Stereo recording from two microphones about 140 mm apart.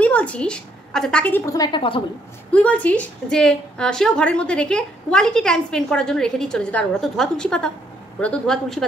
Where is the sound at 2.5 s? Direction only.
10° left (ahead or behind).